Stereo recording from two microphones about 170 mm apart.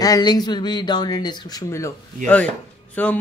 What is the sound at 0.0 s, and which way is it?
Speech, 25° left (ahead or behind).